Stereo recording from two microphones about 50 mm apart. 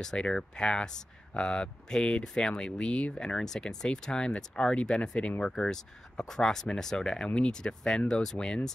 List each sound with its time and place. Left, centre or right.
0.0 s speech: centre